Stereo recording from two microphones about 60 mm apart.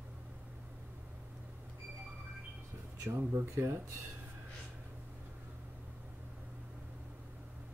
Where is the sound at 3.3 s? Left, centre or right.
Right.